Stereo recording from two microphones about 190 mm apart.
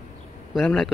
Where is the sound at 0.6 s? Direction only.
Centre (ahead or behind).